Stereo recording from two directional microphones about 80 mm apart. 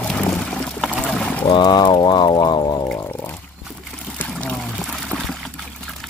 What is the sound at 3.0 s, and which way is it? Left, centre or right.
Pour, left.